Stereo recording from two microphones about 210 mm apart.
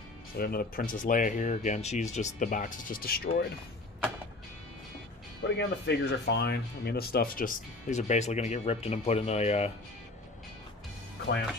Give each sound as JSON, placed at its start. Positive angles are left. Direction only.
{"t": 0.4, "sound": "speech", "side_deg": 45}
{"t": 5.6, "sound": "speech", "side_deg": 55}